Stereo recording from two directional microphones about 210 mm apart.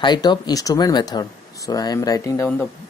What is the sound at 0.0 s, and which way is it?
Speech, 20° left (ahead or behind).